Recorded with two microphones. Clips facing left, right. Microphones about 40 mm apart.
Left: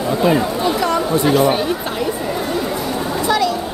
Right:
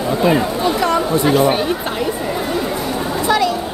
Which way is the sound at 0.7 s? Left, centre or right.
Right.